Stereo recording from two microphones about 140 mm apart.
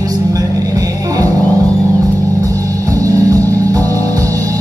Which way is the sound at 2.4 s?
25° right (ahead or behind).